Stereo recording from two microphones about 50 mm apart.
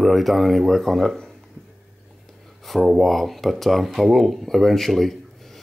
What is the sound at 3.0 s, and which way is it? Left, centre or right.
Speech, centre.